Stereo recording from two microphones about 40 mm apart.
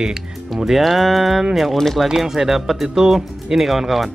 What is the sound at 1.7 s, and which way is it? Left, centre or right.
Speech, centre.